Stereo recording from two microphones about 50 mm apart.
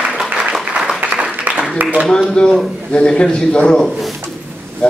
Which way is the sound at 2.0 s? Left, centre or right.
Centre.